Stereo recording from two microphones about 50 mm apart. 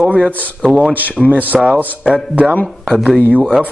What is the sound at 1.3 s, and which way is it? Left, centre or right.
Speech, right.